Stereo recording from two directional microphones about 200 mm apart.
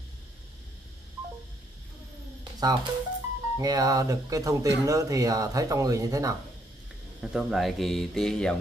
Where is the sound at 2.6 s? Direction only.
20° right (ahead or behind).